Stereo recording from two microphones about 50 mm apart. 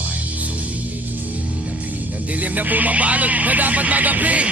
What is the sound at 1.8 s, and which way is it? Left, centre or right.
Music, right.